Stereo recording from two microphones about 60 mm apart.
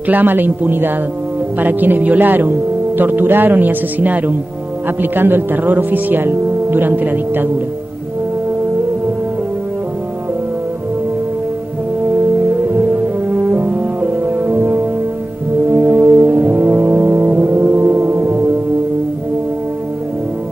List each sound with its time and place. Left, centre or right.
0.1 s speech: right
12.1 s brass instrument: right